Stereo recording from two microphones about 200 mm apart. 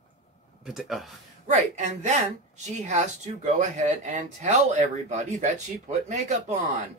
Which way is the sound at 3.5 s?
35° right (ahead or behind).